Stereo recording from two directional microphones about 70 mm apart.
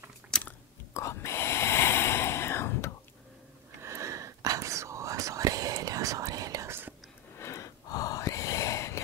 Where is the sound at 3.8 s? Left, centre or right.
Right.